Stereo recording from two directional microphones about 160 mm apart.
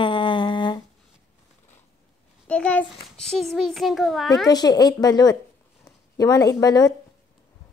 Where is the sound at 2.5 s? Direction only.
10° left (ahead or behind).